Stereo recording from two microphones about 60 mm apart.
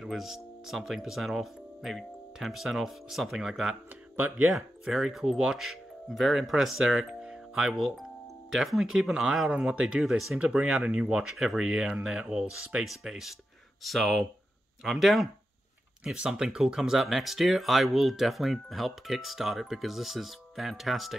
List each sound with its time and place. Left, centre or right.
0.0 s speech: centre
16.0 s speech: centre